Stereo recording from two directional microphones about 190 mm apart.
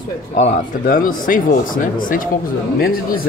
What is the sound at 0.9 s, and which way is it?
Speech, 45° left (ahead or behind).